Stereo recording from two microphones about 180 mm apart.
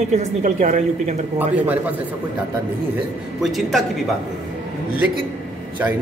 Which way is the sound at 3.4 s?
Centre (ahead or behind).